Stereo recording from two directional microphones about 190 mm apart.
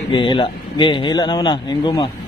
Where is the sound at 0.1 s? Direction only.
25° left (ahead or behind).